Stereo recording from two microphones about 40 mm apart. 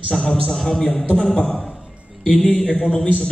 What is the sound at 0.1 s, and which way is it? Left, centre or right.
A man's voice, centre.